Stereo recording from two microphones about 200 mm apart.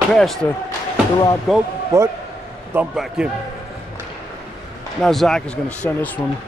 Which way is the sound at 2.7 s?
5° right (ahead or behind).